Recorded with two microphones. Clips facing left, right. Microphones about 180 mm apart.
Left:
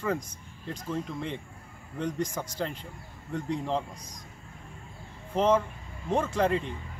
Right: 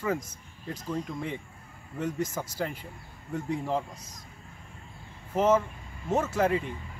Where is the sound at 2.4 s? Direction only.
10° right (ahead or behind).